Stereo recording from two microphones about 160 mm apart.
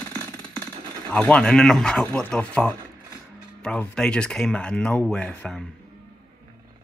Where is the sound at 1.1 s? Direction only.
5° left (ahead or behind).